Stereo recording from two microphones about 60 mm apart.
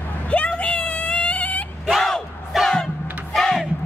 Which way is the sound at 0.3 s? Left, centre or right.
Left.